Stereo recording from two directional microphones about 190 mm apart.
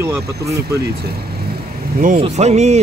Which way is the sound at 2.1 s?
35° right (ahead or behind).